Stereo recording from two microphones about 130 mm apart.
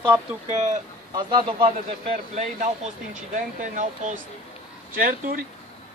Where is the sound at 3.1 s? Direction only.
75° right (ahead or behind).